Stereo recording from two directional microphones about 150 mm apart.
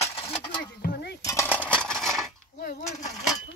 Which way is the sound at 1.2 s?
20° left (ahead or behind).